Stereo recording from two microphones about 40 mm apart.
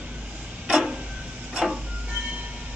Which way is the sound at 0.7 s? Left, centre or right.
Centre.